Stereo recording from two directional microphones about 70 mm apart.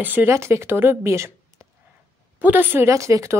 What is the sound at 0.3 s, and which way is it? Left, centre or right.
A woman's voice, right.